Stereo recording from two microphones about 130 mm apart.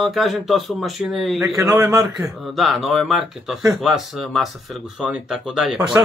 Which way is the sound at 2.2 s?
Centre (ahead or behind).